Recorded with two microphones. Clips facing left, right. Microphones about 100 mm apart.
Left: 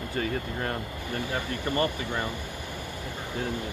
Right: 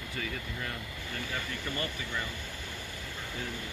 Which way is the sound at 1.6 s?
55° left (ahead or behind).